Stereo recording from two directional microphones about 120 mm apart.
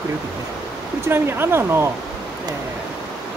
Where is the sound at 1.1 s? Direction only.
20° right (ahead or behind).